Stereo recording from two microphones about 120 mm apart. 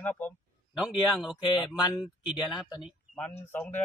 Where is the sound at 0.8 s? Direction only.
Centre (ahead or behind).